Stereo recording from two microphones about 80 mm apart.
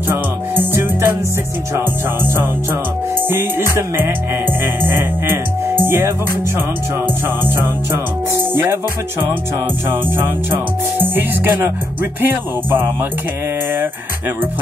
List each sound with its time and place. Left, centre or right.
0.1 s music: right
3.3 s music: right
5.9 s music: right
9.8 s music: right